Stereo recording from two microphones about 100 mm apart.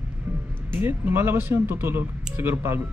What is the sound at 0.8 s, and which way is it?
Speech, 20° right (ahead or behind).